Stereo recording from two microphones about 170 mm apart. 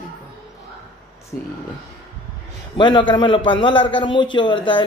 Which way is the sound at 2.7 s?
30° left (ahead or behind).